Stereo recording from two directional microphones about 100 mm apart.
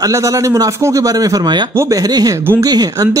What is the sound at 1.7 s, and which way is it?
A man's voice, 30° right (ahead or behind).